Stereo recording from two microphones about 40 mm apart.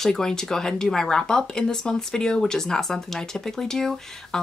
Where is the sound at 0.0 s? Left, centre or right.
Centre.